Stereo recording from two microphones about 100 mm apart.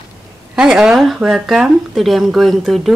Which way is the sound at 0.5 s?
10° right (ahead or behind).